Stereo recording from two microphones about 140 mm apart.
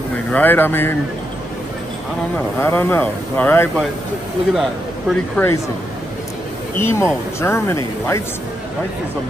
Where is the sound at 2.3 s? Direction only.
15° left (ahead or behind).